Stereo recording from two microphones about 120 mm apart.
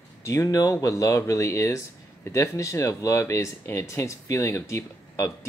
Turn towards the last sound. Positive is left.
turn(degrees=25)  # may be behind; listen again after turning